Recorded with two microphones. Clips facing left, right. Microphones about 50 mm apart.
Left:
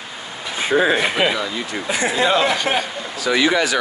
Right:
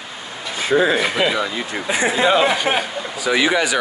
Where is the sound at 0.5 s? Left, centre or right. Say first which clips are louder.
Even; centre.